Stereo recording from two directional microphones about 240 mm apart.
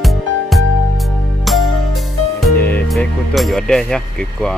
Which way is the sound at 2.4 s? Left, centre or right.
Centre.